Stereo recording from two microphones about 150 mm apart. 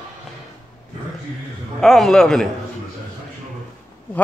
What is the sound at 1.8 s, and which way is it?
Speech, 5° left (ahead or behind).